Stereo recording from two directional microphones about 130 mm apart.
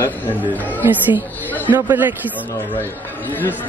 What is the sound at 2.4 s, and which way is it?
A man's voice, 15° left (ahead or behind).